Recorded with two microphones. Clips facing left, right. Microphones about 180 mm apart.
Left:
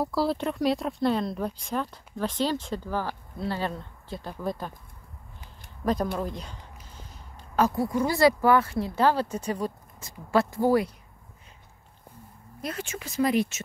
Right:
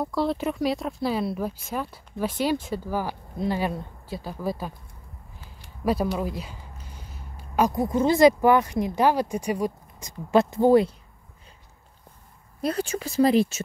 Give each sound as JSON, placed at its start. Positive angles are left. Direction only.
{"t": 0.0, "sound": "speech", "side_deg": 0}
{"t": 6.1, "sound": "speech", "side_deg": -5}
{"t": 12.6, "sound": "speech", "side_deg": -35}